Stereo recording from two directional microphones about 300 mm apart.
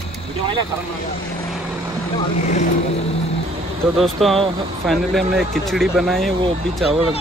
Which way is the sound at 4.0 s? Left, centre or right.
Centre.